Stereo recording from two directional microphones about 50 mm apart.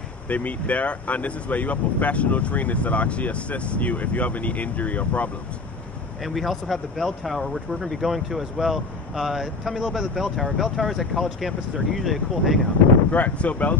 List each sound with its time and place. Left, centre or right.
0.3 s speech: left
6.2 s speech: centre
13.1 s speech: left